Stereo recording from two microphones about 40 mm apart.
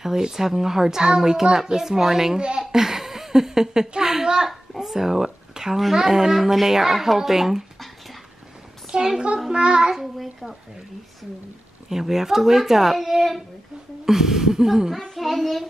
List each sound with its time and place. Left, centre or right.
0.0 s a child's voice: centre
9.5 s child singing: right
9.9 s child singing: centre
11.9 s a child's voice: centre
15.1 s child singing: centre